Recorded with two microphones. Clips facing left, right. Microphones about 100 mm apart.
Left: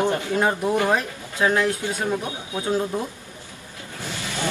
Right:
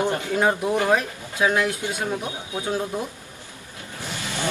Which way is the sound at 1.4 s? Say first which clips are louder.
Left 1 dB; 10° right (ahead or behind).